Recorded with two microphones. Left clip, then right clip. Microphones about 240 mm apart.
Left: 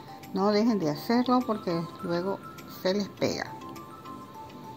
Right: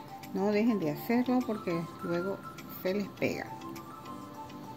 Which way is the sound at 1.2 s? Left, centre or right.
Centre.